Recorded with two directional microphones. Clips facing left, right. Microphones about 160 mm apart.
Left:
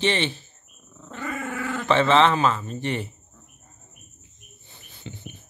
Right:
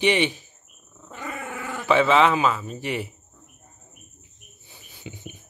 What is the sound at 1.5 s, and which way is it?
Speech, 15° right (ahead or behind).